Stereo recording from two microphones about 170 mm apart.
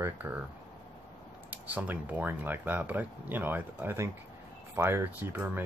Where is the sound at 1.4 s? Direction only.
10° right (ahead or behind).